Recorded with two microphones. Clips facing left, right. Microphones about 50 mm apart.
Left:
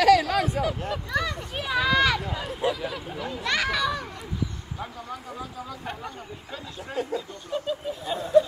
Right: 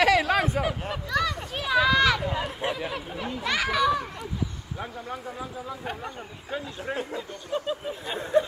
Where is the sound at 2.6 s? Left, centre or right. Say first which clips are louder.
Left 2 dB; right.